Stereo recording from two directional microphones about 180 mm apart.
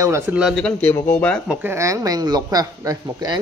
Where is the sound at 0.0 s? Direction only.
15° right (ahead or behind).